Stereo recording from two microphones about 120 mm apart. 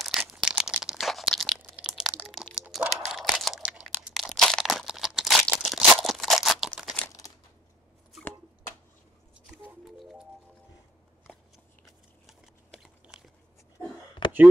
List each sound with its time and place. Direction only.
0.0 s crunch: centre (ahead or behind)
13.0 s biting: 5° right (ahead or behind)
14.2 s a sound: 40° left (ahead or behind)